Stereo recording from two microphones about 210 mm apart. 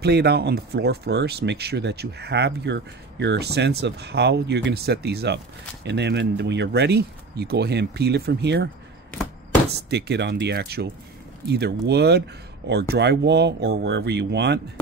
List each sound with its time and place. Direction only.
0.0 s speech: 50° right (ahead or behind)
9.7 s speech: 55° right (ahead or behind)